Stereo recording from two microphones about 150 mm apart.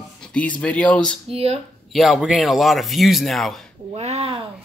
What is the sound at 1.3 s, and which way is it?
Speech, 40° right (ahead or behind).